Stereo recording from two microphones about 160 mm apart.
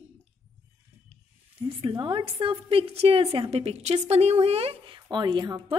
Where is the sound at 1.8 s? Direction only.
30° right (ahead or behind).